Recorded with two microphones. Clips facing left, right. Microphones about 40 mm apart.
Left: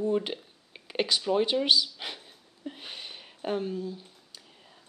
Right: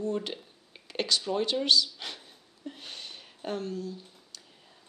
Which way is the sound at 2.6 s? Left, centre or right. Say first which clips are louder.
Left 2 dB; centre.